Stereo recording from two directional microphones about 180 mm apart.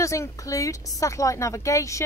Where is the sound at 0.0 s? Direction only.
15° left (ahead or behind).